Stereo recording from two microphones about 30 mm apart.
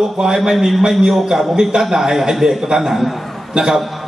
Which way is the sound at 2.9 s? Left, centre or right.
Centre.